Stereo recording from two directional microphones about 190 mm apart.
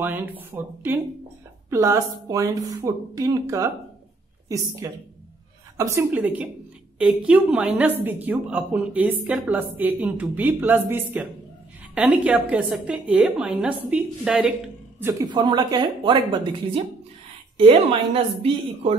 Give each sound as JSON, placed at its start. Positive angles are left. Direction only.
{"t": 0.0, "sound": "a woman's voice", "side_deg": -10}